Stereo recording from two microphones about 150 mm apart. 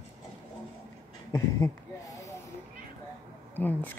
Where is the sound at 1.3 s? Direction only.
20° left (ahead or behind).